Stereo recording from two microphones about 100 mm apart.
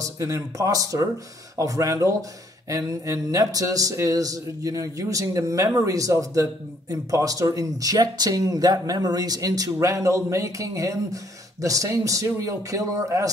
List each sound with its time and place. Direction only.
0.0 s speech: 35° right (ahead or behind)